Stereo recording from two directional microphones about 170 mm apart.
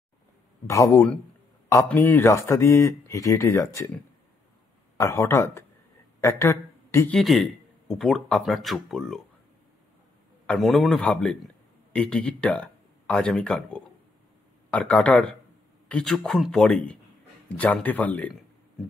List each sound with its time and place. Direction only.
0.7 s speech: 20° left (ahead or behind)
4.9 s speech: 15° left (ahead or behind)
7.2 s speech: centre (ahead or behind)
10.4 s a man's voice: 5° left (ahead or behind)